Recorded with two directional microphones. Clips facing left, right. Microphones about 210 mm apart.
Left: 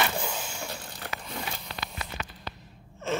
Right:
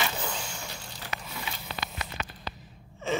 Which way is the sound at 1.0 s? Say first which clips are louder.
Left 1 dB; 50° left (ahead or behind).